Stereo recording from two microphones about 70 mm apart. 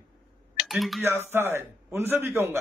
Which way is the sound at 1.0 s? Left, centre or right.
Right.